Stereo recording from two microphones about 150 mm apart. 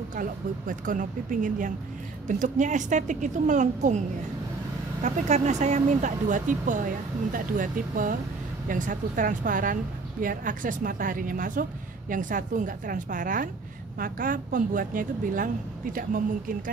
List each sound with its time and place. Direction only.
0.1 s speech: 65° right (ahead or behind)
5.0 s a woman's voice: 50° right (ahead or behind); by 16.5 s 65° right (ahead or behind)